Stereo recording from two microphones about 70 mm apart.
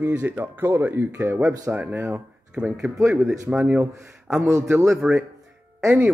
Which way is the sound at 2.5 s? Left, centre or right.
Centre.